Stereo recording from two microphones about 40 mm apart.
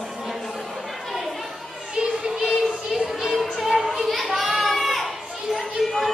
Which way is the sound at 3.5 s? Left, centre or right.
Centre.